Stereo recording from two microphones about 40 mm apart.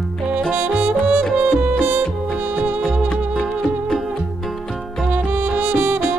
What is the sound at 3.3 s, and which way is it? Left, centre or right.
Music, centre.